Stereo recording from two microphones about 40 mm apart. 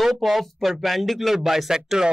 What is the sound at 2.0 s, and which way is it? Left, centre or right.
Speech, centre.